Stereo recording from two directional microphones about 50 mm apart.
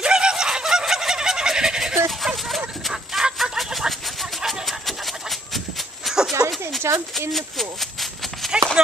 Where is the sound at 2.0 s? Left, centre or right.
Centre.